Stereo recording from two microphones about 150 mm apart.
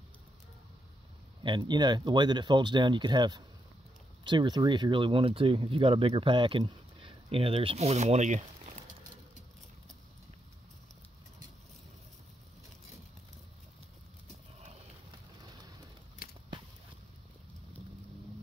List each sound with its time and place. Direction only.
1.4 s speech: 30° right (ahead or behind); by 8.7 s 50° right (ahead or behind)